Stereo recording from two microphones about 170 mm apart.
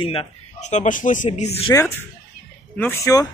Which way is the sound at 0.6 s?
45° left (ahead or behind).